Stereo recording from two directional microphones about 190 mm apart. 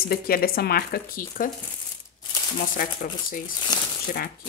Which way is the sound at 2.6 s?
50° left (ahead or behind).